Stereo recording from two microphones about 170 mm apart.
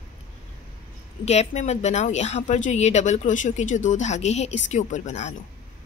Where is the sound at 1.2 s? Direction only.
40° left (ahead or behind).